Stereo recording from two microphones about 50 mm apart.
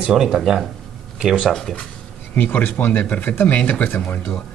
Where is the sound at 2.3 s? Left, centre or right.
Left.